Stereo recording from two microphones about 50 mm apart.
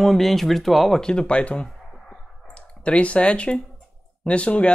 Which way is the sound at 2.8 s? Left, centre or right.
Left.